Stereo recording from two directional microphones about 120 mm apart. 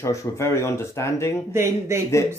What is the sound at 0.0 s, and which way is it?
Speech, 25° left (ahead or behind).